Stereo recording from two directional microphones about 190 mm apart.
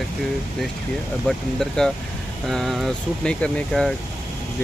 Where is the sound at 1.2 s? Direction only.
Centre (ahead or behind).